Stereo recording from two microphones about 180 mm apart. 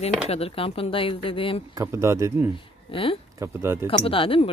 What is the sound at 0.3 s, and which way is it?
Speech, 30° left (ahead or behind).